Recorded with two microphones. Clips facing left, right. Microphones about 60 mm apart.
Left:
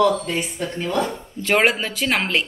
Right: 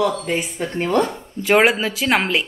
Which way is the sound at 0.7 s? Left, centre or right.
Right.